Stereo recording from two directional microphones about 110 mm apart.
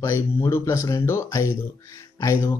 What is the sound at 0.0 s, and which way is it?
Speech, 25° left (ahead or behind).